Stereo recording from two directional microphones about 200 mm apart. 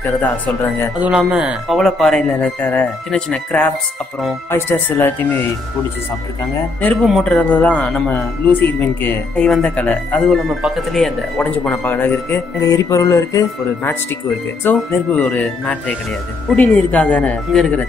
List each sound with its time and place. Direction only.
1.0 s speech: 5° right (ahead or behind)
6.8 s speech: 5° left (ahead or behind)